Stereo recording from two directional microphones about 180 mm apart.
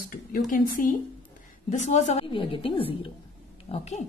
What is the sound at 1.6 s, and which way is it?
A woman's voice, 40° left (ahead or behind).